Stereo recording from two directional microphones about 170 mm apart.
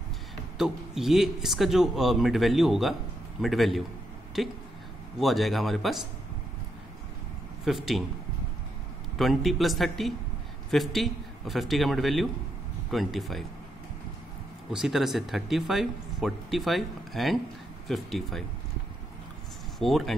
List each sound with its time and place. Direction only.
0.6 s speech: centre (ahead or behind)
7.6 s speech: centre (ahead or behind)
9.2 s speech: centre (ahead or behind)
14.7 s speech: centre (ahead or behind)
19.8 s speech: centre (ahead or behind)